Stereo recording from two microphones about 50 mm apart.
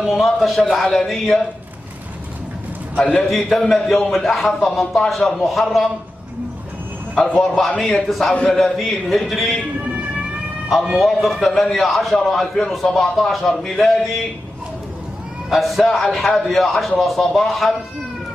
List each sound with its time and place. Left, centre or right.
0.0 s a man's voice: centre
3.0 s a man's voice: centre
7.7 s a man's voice: centre
8.1 s a man's voice: centre
10.7 s a man's voice: centre
15.5 s a man's voice: centre